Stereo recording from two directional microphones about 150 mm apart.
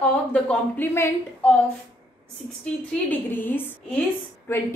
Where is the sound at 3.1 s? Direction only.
15° left (ahead or behind).